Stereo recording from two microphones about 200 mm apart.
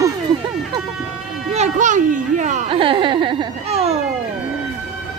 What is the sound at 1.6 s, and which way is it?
A child's voice, 40° right (ahead or behind).